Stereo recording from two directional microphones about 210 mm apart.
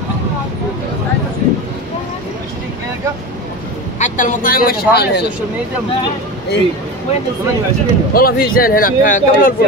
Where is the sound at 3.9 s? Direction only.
35° left (ahead or behind).